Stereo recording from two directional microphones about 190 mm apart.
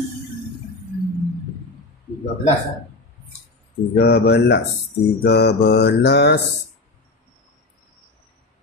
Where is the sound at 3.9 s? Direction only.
55° left (ahead or behind).